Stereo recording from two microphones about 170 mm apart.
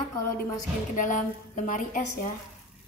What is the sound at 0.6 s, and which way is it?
A woman's voice, 50° left (ahead or behind).